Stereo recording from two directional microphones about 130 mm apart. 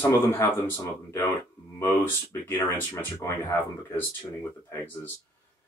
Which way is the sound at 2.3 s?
15° left (ahead or behind).